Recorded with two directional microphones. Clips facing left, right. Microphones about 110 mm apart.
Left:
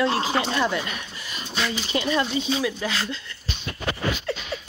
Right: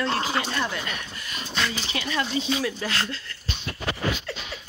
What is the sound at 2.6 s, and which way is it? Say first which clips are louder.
Speech: left 1 dB; 5° left (ahead or behind).